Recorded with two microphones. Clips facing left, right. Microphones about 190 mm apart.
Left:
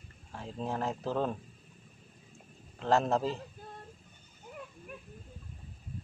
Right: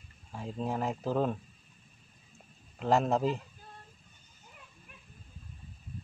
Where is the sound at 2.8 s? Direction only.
10° right (ahead or behind).